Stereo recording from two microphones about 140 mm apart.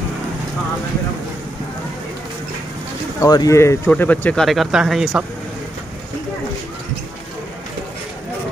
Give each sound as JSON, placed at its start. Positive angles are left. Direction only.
{"t": 3.2, "sound": "speech", "side_deg": 25}